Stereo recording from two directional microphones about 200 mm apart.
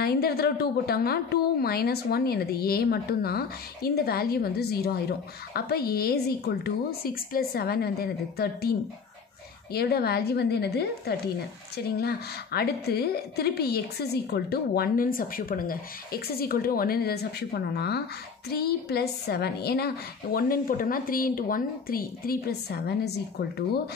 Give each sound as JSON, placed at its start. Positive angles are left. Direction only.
{"t": 0.0, "sound": "a woman's voice", "side_deg": 50}